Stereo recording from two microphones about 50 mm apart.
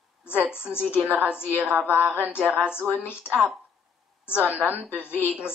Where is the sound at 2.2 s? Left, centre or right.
Left.